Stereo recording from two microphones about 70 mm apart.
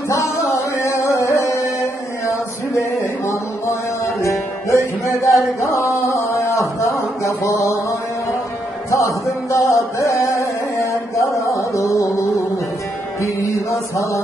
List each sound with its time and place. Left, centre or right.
0.5 s music: left
3.3 s music: left
5.0 s a sound: left
8.9 s music: left
13.2 s mantra: left